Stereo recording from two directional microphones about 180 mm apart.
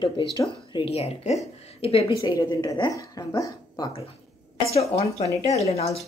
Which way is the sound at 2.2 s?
20° left (ahead or behind).